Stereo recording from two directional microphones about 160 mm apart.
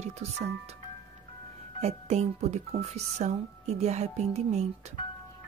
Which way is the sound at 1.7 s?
45° right (ahead or behind).